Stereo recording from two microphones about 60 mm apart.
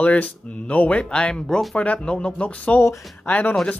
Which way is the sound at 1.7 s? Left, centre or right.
Left.